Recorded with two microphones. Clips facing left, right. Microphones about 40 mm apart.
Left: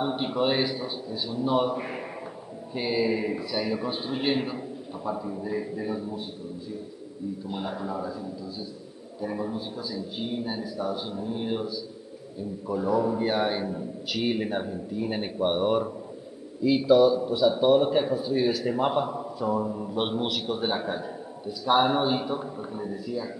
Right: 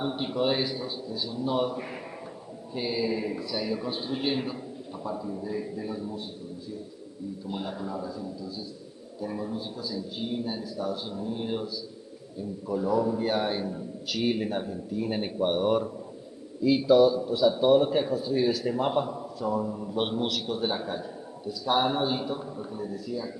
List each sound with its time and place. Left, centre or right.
0.0 s a man's voice: centre
7.4 s a man's voice: centre